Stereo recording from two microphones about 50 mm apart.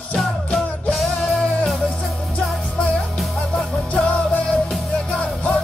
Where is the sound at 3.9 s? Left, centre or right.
Left.